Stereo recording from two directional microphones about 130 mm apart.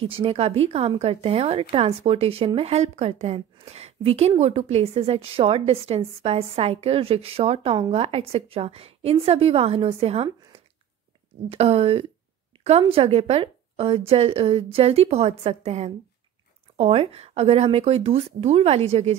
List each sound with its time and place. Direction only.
0.0 s a woman's voice: 45° right (ahead or behind)
11.5 s a woman's voice: 50° right (ahead or behind)